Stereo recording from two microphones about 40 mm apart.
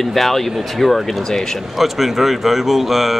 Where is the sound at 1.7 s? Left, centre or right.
Centre.